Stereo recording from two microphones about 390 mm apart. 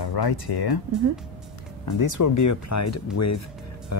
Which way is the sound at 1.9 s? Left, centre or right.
Left.